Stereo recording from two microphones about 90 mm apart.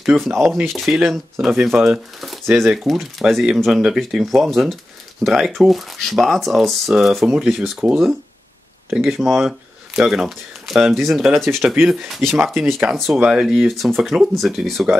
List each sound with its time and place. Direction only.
0.0 s speech: centre (ahead or behind)
2.4 s speech: 25° right (ahead or behind)
2.7 s speech: centre (ahead or behind)
8.9 s speech: centre (ahead or behind)